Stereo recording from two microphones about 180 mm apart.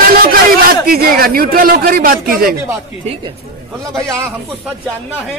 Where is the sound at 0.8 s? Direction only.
55° right (ahead or behind).